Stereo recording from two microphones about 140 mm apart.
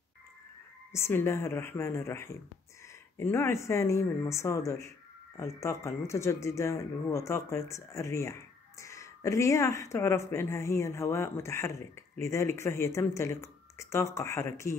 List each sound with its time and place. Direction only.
0.9 s speech: 20° left (ahead or behind)